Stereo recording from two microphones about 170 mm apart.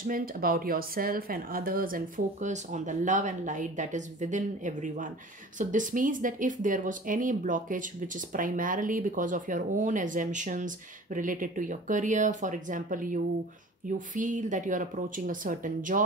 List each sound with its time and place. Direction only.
0.0 s speech: 55° right (ahead or behind)